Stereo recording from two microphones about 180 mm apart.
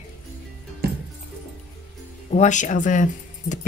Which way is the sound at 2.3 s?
40° left (ahead or behind).